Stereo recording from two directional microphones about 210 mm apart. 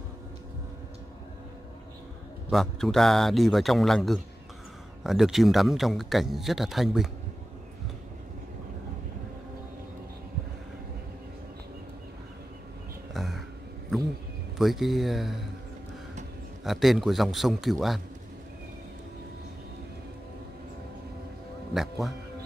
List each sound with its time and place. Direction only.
2.5 s a man's voice: centre (ahead or behind)
13.1 s a sound: centre (ahead or behind)
14.6 s a man's voice: centre (ahead or behind)
16.6 s a man's voice: centre (ahead or behind)
21.7 s speech: centre (ahead or behind)